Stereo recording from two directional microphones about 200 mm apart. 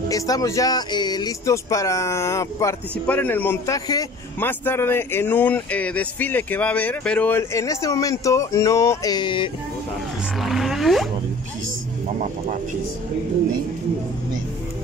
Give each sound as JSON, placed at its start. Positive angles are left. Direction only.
{"t": 0.1, "sound": "speech", "side_deg": 15}
{"t": 10.4, "sound": "roaring cats", "side_deg": 0}